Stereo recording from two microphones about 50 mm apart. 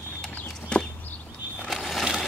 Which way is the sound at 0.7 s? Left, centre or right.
Centre.